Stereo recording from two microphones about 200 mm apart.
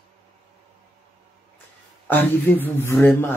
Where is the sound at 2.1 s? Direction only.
10° left (ahead or behind).